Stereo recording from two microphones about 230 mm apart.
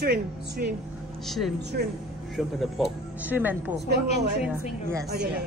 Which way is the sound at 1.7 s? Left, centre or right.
Right.